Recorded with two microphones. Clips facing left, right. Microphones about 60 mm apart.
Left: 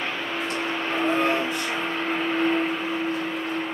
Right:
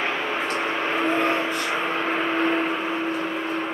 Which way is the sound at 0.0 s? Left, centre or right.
Right.